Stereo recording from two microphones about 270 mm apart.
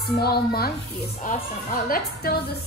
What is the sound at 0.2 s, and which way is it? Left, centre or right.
A woman's voice, left.